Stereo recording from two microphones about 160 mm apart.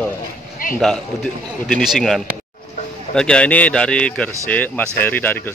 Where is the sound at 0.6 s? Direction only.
60° left (ahead or behind).